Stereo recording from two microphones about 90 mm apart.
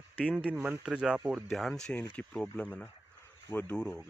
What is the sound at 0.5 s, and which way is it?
Speech, 15° right (ahead or behind).